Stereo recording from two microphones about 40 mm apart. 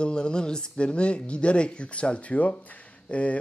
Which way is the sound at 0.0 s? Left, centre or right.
Left.